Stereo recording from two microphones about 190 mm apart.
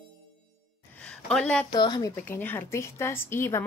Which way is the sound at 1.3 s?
5° left (ahead or behind).